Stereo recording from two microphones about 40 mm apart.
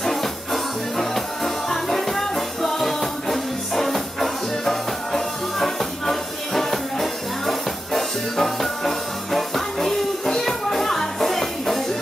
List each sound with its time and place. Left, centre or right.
0.0 s music: centre